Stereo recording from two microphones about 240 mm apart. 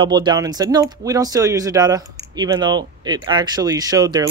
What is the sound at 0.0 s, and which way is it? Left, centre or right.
Speech, centre.